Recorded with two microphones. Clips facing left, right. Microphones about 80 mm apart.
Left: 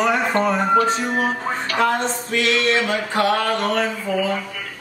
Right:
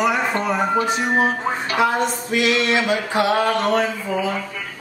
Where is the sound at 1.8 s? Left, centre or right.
Centre.